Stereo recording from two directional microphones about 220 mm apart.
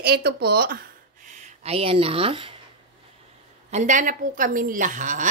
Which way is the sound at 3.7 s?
35° right (ahead or behind).